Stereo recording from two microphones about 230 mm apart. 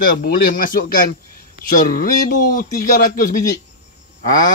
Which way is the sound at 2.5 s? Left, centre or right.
Left.